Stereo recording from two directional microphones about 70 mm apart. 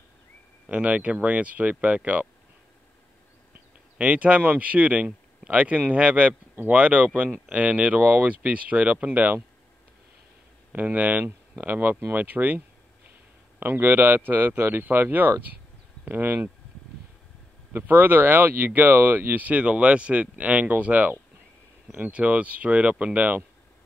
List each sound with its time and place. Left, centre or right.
0.7 s speech: centre
4.0 s speech: centre
10.7 s speech: right
12.1 s a sound: right
13.6 s speech: right
17.7 s speech: right